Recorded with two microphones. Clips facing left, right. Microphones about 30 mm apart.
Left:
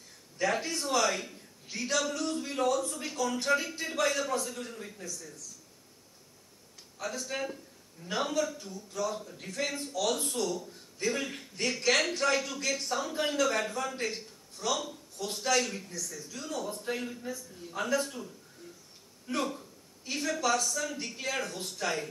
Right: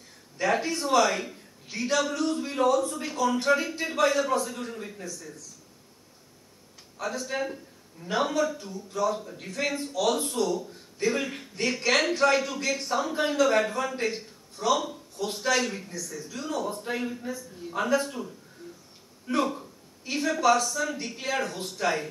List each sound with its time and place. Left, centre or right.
0.4 s a man's voice: centre
7.0 s a man's voice: centre
9.2 s a man's voice: right
9.5 s a man's voice: centre
19.2 s a man's voice: centre